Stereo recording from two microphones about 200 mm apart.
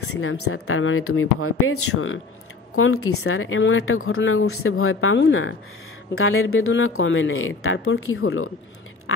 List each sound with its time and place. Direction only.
0.2 s speech: 90° left